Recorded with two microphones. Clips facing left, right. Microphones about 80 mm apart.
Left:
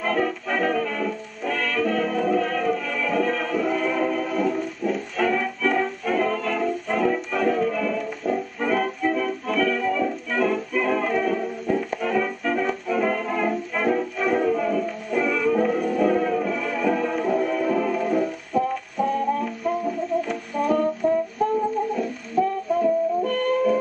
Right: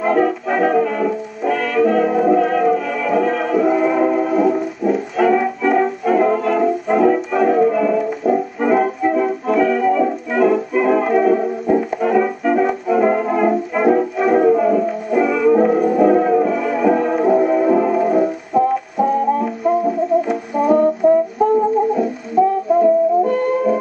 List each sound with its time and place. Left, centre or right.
0.0 s music: right
4.3 s music: centre
8.0 s music: centre
12.6 s brass instrument: centre
14.3 s music: right
18.0 s music: centre